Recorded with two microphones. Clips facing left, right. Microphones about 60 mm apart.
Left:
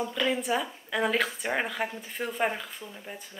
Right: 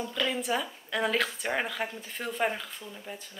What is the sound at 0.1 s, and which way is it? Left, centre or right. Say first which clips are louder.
Speech: even; centre.